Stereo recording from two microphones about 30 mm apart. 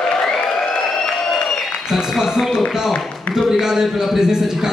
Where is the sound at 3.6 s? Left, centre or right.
Centre.